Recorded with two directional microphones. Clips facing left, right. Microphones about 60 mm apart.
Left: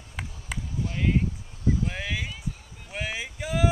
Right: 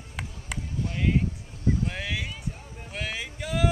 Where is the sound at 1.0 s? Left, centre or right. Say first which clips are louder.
Even; centre.